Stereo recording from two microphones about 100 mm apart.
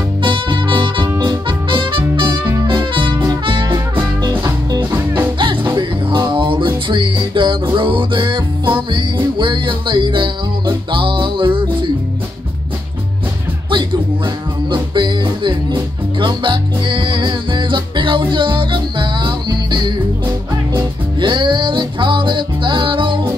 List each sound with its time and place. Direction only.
0.2 s music: 55° right (ahead or behind)
4.9 s music: 20° right (ahead or behind)
5.4 s music: 55° right (ahead or behind)
14.7 s music: 50° right (ahead or behind)
21.2 s music: 50° right (ahead or behind)